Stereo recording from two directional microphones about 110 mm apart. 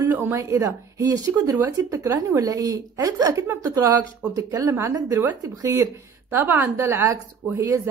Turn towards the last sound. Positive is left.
turn(degrees=-25)  # may be behind; listen again after turning